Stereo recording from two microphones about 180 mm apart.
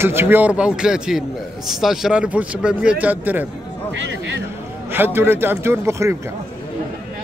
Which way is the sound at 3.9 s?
90° right.